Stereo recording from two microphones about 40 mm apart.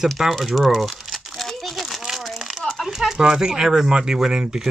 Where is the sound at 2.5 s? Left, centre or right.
Centre.